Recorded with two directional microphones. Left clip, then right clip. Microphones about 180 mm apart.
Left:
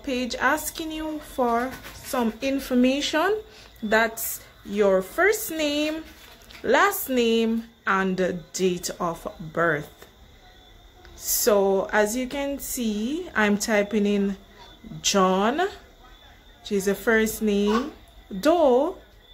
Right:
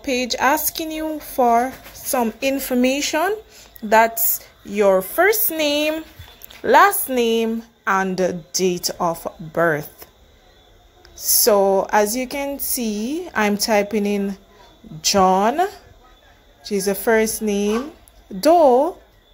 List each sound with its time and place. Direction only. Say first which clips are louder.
0.0 s speech: right 6 dB; 20° right (ahead or behind)
11.3 s speech: right 5 dB; 10° right (ahead or behind)
18.4 s speech: right 6 dB; 10° right (ahead or behind)